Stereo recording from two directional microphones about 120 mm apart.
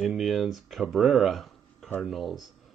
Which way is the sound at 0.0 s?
5° right (ahead or behind).